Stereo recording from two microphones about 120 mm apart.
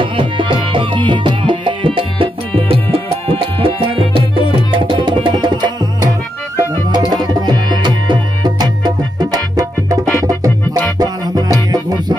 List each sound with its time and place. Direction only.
0.0 s music: 45° right (ahead or behind)
7.1 s music: 35° right (ahead or behind)